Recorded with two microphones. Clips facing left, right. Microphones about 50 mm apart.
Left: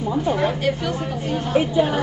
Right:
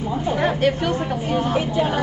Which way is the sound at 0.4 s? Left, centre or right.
Right.